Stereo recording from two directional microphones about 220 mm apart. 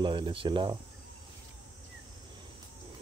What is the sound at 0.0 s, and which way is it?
Speech, 20° right (ahead or behind).